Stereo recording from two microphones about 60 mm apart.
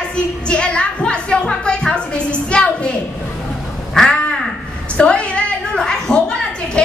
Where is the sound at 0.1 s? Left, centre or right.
Centre.